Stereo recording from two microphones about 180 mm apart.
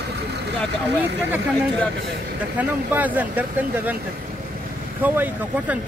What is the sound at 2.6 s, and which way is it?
Speech, 10° right (ahead or behind).